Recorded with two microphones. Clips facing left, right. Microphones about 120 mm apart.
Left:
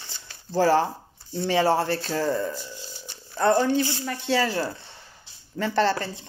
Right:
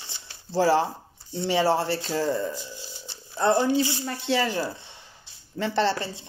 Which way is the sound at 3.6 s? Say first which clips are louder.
Even; 15° right (ahead or behind).